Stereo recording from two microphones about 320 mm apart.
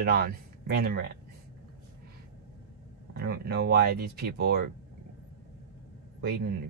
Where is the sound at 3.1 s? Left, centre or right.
Right.